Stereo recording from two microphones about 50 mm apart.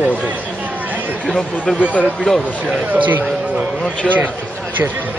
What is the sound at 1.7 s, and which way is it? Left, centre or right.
Speech, centre.